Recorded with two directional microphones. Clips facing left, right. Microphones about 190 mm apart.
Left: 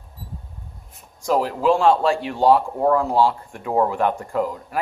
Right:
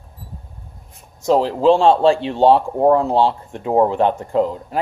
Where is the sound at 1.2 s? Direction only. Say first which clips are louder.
Right 5 dB; 25° right (ahead or behind).